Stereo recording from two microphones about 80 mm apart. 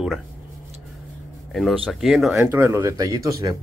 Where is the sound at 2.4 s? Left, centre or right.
Right.